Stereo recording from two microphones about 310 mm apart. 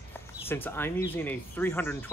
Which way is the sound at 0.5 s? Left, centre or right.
Centre.